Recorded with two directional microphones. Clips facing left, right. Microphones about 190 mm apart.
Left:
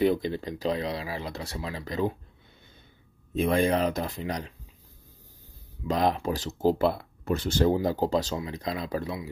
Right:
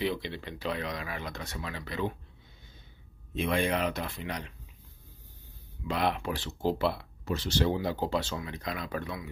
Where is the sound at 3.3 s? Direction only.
40° left (ahead or behind).